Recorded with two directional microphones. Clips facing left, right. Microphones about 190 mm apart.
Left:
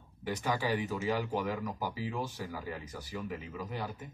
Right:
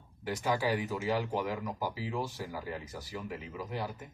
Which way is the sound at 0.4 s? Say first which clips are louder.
Right 2 dB; 10° right (ahead or behind).